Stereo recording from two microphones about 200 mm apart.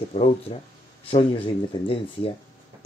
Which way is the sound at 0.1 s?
30° left (ahead or behind).